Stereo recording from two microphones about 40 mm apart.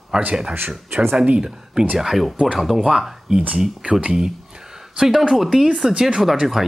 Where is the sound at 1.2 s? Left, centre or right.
Right.